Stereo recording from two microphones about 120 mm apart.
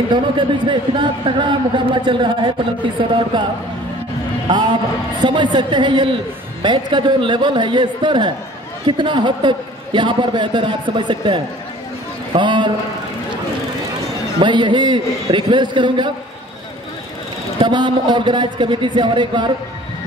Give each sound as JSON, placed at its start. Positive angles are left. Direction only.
{"t": 0.1, "sound": "a man's voice", "side_deg": -40}
{"t": 4.5, "sound": "a man's voice", "side_deg": -40}
{"t": 14.4, "sound": "a man's voice", "side_deg": -40}
{"t": 17.6, "sound": "a man's voice", "side_deg": -40}